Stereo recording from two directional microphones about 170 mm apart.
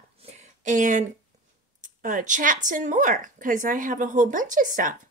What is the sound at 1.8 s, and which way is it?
Speech, 50° right (ahead or behind).